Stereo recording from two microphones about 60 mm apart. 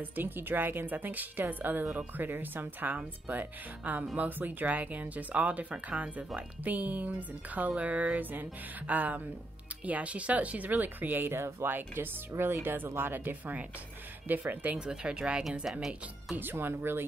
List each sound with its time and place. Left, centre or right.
0.0 s a woman's voice: right
14.8 s speech: centre
16.3 s a woman's voice: right